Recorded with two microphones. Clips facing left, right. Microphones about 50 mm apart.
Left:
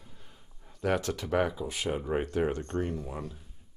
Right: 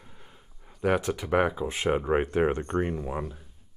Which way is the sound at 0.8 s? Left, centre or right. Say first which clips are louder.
Right 4 dB; centre.